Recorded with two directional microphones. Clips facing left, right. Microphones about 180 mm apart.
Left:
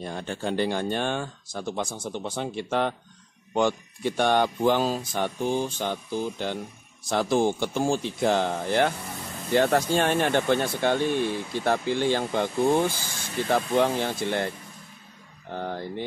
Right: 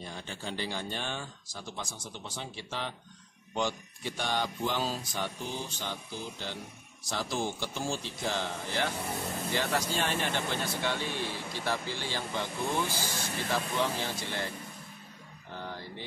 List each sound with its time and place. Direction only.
0.0 s speech: 55° left (ahead or behind)
15.5 s speech: 55° left (ahead or behind)